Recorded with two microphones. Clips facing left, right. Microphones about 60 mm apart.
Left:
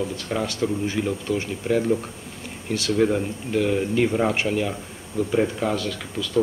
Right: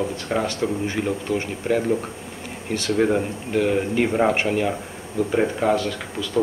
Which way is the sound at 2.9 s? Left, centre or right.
Centre.